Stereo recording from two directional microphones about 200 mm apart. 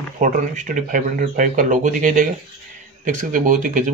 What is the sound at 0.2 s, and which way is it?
Speech, 40° right (ahead or behind).